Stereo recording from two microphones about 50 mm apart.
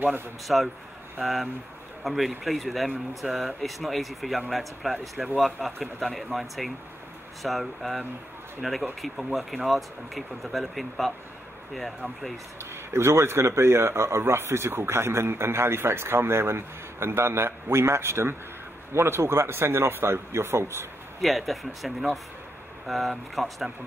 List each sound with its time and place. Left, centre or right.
0.5 s speech: centre
12.9 s speech: right
21.2 s speech: centre